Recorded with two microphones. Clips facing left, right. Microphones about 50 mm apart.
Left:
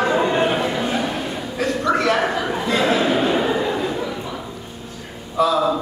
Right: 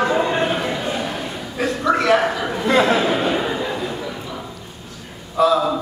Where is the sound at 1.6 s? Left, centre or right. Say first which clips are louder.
Right 1 dB; centre.